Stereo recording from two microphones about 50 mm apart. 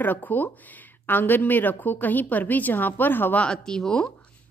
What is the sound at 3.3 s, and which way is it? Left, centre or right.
Speech, centre.